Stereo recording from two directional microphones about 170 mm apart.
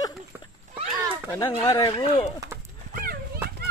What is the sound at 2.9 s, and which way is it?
Clip-clop, 60° right (ahead or behind).